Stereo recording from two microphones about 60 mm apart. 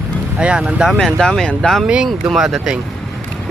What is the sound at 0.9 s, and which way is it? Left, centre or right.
Speech, centre.